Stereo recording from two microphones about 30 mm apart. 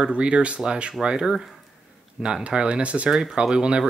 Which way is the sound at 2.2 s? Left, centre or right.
Right.